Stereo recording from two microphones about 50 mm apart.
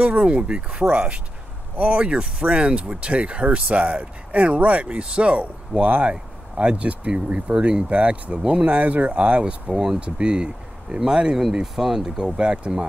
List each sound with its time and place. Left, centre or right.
0.0 s speech: right
9.7 s speech: centre
9.9 s speech: centre
12.4 s speech: centre